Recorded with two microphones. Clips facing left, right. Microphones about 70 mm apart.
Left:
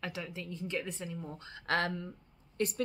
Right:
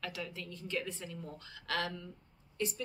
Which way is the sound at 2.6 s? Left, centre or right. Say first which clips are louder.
Left 3 dB; left.